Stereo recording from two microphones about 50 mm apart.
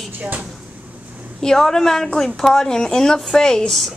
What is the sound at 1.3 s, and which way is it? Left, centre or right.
Speech, centre.